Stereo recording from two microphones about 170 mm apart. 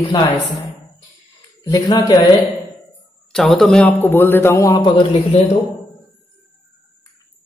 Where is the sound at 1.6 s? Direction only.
25° left (ahead or behind).